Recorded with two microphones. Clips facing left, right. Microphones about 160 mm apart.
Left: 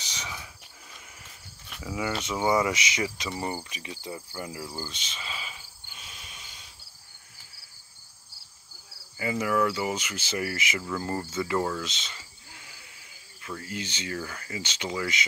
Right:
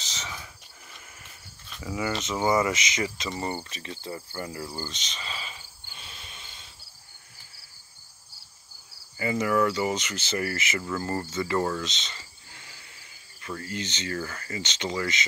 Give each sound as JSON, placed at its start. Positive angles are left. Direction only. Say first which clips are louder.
{"t": 0.0, "sound": "cricket", "louder": "even", "side_deg": 10}
{"t": 1.7, "sound": "speech", "louder": "right 1 dB", "side_deg": 5}
{"t": 4.6, "sound": "cricket", "louder": "right 1 dB", "side_deg": 5}
{"t": 9.2, "sound": "speech", "louder": "right 2 dB", "side_deg": 5}